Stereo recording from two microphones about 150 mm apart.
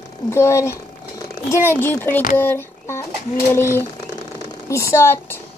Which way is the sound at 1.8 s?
15° left (ahead or behind).